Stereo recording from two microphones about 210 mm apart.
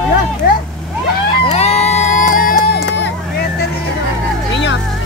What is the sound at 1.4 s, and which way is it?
Crowd, 30° left (ahead or behind).